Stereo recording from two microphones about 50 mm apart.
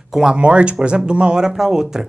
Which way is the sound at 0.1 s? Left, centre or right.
Centre.